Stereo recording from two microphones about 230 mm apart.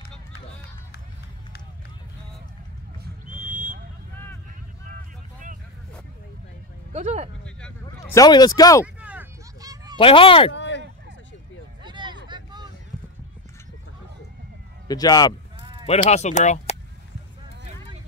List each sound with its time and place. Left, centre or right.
3.0 s a sound: right
6.9 s speech: right
7.8 s speech: centre
8.8 s a sound: centre
9.9 s speech: left
10.5 s a sound: left
11.8 s vehicle: centre
14.9 s speech: centre
15.8 s speech: left